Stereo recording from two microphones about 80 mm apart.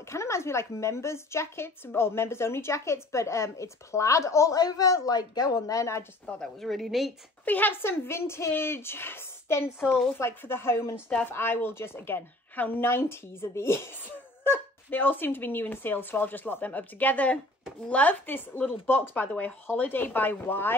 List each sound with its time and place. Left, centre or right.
0.1 s a woman's voice: left
6.2 s speech: centre
7.4 s a woman's voice: left